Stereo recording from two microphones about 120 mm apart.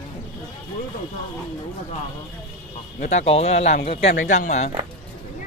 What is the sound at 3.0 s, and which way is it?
Speech, 70° left (ahead or behind).